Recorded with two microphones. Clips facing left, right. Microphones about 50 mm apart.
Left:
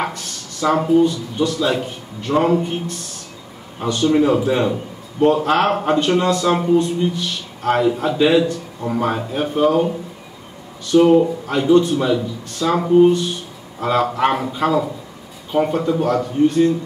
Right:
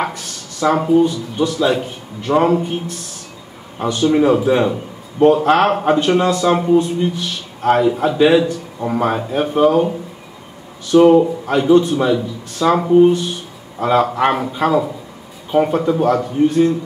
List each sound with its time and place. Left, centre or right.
0.0 s a man's voice: centre